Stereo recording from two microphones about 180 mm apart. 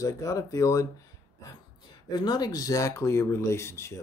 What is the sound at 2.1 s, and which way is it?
Speech, 25° left (ahead or behind).